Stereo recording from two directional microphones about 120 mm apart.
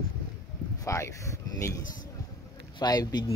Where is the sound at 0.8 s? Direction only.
25° left (ahead or behind).